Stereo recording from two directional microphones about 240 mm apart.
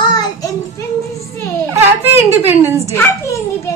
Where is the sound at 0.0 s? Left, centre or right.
Centre.